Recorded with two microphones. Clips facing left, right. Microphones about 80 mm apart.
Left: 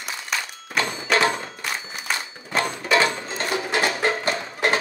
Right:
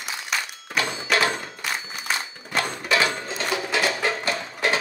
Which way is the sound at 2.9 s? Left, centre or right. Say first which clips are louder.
Left 3 dB; left.